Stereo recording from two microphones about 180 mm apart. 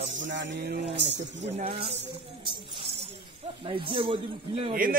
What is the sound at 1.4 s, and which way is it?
Speech, 40° right (ahead or behind).